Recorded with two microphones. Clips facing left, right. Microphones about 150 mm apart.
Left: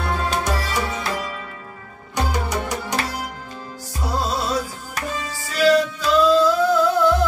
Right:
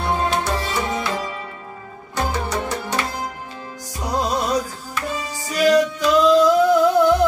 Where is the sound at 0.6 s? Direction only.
25° right (ahead or behind).